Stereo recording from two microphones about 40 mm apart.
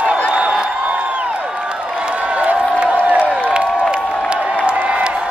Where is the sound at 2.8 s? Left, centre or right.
Right.